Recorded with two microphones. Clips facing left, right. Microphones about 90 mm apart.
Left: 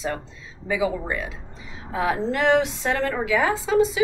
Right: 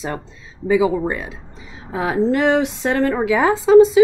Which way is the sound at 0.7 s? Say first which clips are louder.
Right 8 dB; 25° right (ahead or behind).